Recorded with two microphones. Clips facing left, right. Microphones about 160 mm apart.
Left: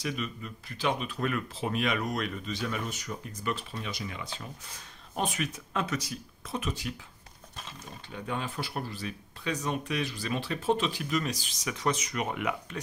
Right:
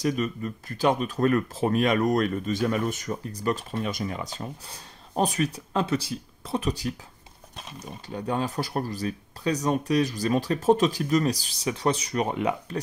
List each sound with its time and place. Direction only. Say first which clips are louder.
0.0 s speech: right 8 dB; 45° right (ahead or behind)